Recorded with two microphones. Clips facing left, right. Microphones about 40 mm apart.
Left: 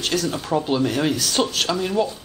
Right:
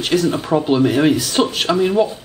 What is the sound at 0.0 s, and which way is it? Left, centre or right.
Speech, centre.